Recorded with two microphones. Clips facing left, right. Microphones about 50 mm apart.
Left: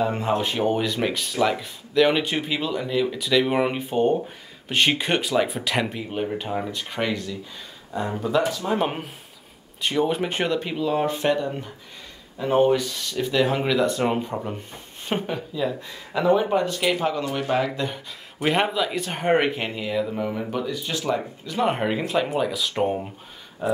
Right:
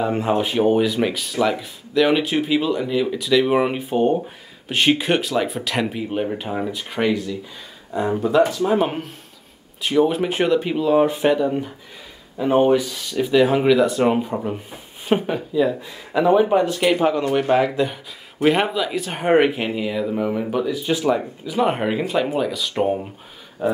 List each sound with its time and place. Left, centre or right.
0.0 s speech: centre
8.5 s speech: centre; by 17.6 s right
17.6 s speech: centre